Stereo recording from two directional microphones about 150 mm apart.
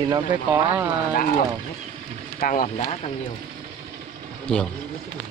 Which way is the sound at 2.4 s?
65° left (ahead or behind).